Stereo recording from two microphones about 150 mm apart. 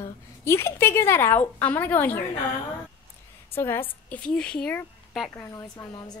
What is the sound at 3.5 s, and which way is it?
A woman's voice, 15° left (ahead or behind).